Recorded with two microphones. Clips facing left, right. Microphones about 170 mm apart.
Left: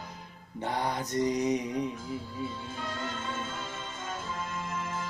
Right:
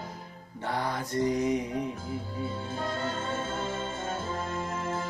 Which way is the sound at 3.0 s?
35° right (ahead or behind).